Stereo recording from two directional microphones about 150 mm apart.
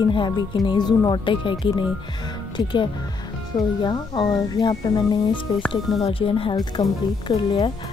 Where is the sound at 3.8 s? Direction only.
30° left (ahead or behind).